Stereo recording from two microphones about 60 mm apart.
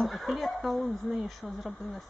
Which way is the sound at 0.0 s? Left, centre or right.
Centre.